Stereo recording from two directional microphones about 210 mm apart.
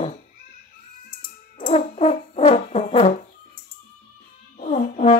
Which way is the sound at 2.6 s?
30° left (ahead or behind).